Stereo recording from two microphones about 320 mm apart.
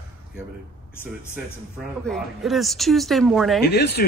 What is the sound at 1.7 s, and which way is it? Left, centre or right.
A woman's voice, centre.